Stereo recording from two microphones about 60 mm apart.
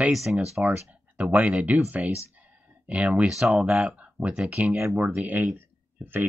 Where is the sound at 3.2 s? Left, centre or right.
Centre.